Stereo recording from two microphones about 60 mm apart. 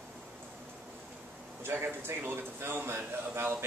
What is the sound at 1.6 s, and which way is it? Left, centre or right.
A man's voice, right.